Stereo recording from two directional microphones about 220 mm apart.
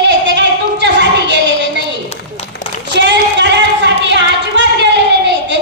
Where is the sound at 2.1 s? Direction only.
25° left (ahead or behind).